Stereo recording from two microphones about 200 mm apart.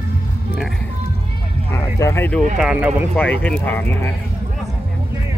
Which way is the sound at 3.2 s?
5° left (ahead or behind).